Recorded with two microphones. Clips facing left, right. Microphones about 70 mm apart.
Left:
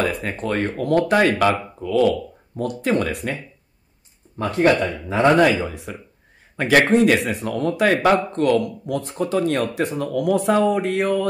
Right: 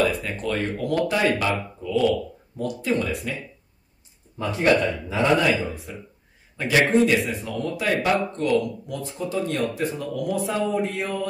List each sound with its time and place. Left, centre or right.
0.0 s speech: left
4.4 s speech: left
5.9 s speech: left